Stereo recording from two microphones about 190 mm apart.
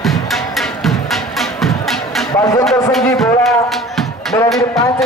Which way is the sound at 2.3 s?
15° left (ahead or behind).